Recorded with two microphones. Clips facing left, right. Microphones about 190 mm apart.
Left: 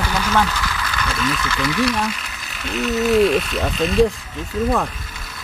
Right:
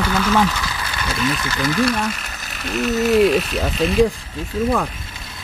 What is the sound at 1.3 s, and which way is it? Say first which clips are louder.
Speech: right 1 dB; 35° right (ahead or behind).